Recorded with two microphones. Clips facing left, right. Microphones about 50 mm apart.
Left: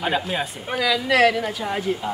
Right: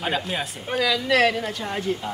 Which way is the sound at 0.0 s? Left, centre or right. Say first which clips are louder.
Left 3 dB; centre.